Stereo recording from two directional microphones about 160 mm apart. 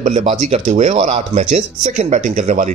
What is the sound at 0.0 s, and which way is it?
A man's voice, 45° right (ahead or behind).